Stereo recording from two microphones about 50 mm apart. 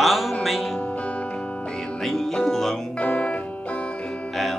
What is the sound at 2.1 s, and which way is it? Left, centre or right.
Music, centre.